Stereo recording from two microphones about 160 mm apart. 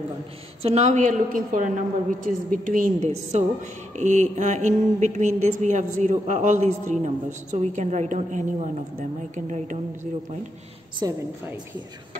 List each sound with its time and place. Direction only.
0.6 s speech: 40° right (ahead or behind); by 3.1 s 60° right (ahead or behind)
3.1 s speech: 45° right (ahead or behind)
11.0 s a woman's voice: 20° right (ahead or behind)